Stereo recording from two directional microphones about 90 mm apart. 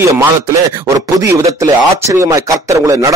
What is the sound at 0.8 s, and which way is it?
Speech, 40° right (ahead or behind).